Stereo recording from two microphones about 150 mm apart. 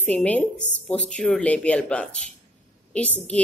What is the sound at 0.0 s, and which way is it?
Speech, 10° left (ahead or behind).